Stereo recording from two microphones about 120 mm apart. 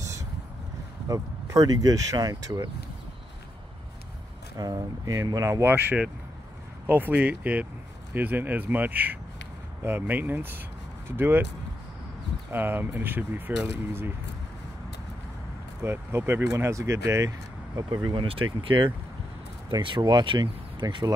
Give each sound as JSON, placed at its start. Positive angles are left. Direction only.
{"t": 0.0, "sound": "vehicle", "side_deg": -25}
{"t": 1.0, "sound": "speech", "side_deg": -30}
{"t": 4.6, "sound": "speech", "side_deg": -30}
{"t": 12.4, "sound": "speech", "side_deg": -15}
{"t": 15.8, "sound": "speech", "side_deg": -20}
{"t": 18.2, "sound": "speech", "side_deg": -50}